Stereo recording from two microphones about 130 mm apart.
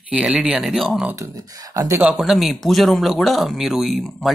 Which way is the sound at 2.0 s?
5° right (ahead or behind).